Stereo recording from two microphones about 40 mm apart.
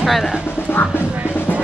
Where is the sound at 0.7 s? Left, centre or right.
Left.